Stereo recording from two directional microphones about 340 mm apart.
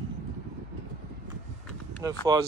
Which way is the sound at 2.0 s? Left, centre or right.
Centre.